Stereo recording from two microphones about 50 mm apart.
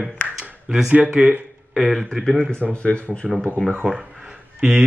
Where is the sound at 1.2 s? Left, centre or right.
Centre.